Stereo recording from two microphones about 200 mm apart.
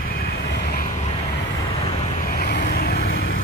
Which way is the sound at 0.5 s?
55° left (ahead or behind).